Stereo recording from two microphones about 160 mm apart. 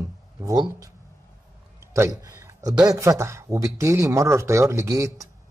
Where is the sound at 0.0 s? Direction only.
20° right (ahead or behind).